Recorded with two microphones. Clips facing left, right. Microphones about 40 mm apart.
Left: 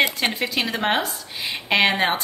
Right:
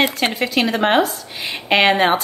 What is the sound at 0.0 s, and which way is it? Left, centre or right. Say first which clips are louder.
A woman's voice: right 3 dB; centre.